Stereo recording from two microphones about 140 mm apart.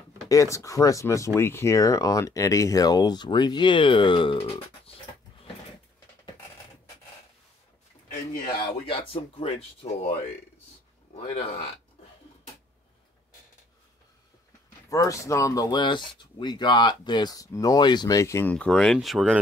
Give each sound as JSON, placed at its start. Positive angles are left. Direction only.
{"t": 0.3, "sound": "speech", "side_deg": 20}
{"t": 8.5, "sound": "speech", "side_deg": 35}
{"t": 14.9, "sound": "speech", "side_deg": 25}